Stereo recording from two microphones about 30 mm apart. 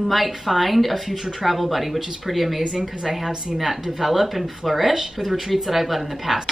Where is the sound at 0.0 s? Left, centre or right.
Centre.